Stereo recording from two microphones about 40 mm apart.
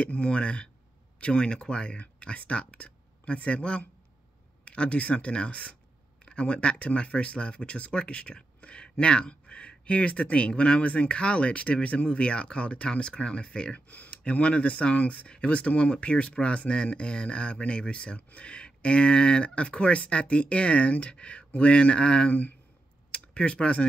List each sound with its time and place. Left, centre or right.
0.0 s speech: left
13.7 s speech: left
14.2 s speech: left